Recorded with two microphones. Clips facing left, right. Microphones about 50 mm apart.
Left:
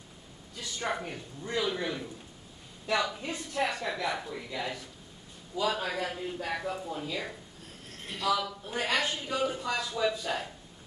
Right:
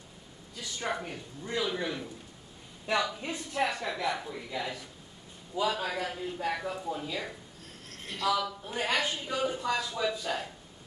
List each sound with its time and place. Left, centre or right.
0.6 s a woman's voice: centre
3.2 s a woman's voice: centre
3.8 s a woman's voice: centre